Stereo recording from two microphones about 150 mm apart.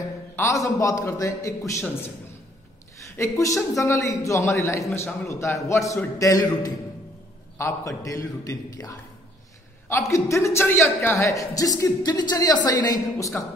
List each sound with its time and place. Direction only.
0.4 s a man's voice: 20° left (ahead or behind)
3.2 s a man's voice: 20° left (ahead or behind)